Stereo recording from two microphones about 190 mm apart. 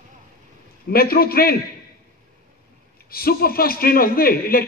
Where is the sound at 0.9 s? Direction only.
55° left (ahead or behind).